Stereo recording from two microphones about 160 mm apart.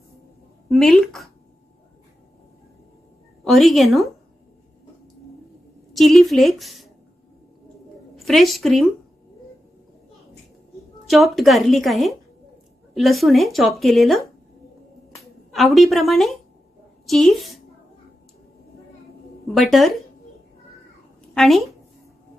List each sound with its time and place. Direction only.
0.7 s speech: centre (ahead or behind)
3.4 s speech: centre (ahead or behind)
5.9 s speech: centre (ahead or behind)
8.3 s speech: centre (ahead or behind)
11.1 s speech: centre (ahead or behind)
15.5 s speech: centre (ahead or behind)
19.4 s speech: centre (ahead or behind)
21.4 s speech: centre (ahead or behind)